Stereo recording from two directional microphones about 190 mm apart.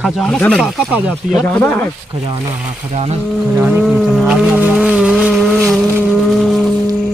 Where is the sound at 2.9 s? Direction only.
35° right (ahead or behind).